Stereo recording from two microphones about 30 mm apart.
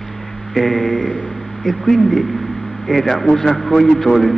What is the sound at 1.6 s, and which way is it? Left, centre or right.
A man's voice, centre.